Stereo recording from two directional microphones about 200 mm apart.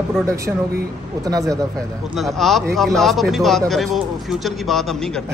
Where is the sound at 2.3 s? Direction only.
Centre (ahead or behind).